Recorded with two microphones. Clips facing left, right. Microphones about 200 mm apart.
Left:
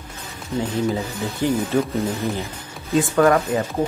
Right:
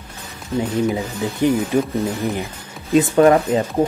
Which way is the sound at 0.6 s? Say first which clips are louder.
Right 3 dB; 15° right (ahead or behind).